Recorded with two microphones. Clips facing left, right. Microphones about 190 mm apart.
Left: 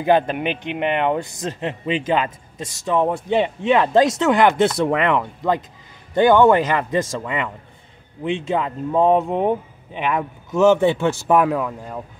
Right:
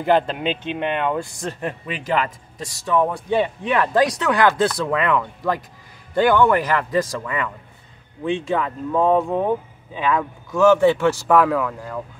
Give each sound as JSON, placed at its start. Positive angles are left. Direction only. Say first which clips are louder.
{"t": 0.0, "sound": "a man's voice", "louder": "left 1 dB", "side_deg": 15}